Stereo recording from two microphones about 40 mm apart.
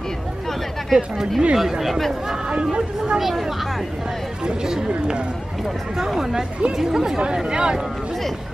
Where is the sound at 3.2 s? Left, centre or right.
Centre.